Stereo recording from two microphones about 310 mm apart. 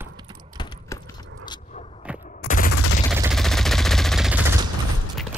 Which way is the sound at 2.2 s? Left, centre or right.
Left.